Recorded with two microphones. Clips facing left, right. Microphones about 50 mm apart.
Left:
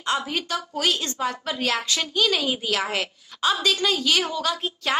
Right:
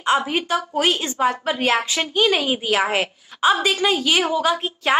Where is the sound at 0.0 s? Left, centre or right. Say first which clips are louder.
Right 6 dB; right.